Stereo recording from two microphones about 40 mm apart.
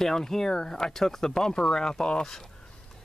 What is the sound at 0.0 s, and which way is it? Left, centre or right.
Speech, centre.